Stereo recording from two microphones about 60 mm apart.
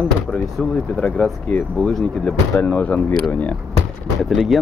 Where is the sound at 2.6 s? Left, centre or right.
Left.